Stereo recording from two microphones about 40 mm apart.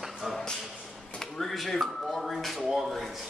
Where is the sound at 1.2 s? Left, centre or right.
Centre.